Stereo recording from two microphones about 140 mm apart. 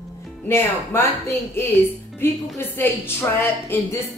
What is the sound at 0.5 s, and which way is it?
A woman's voice, 15° left (ahead or behind).